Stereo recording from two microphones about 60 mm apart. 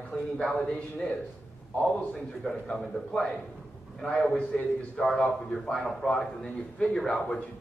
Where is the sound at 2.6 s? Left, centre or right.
Centre.